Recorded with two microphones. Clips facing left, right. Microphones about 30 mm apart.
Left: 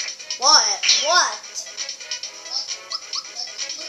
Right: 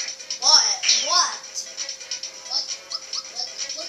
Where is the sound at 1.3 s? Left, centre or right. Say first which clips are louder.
Left 2 dB; centre.